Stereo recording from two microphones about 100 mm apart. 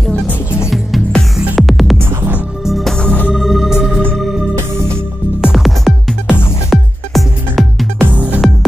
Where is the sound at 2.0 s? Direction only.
20° right (ahead or behind).